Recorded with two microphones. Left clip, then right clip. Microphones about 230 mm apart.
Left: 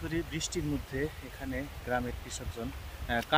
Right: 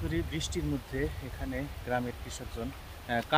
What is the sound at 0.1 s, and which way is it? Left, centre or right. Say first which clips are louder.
Speech: left 1 dB; centre.